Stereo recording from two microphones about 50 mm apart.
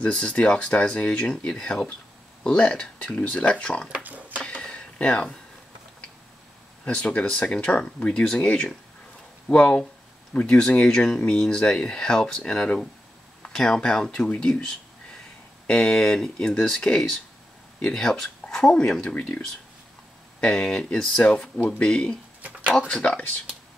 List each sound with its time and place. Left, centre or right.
0.0 s speech: centre
3.2 s speech: left
4.0 s a sound: right
4.6 s a sound: left
6.8 s speech: left
20.3 s speech: centre
21.5 s speech: left